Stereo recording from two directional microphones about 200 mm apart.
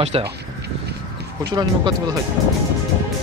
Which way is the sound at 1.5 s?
20° right (ahead or behind).